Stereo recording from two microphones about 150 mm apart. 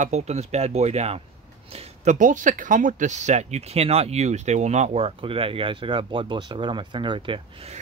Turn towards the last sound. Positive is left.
turn(degrees=-40)  # may be behind; listen again after turning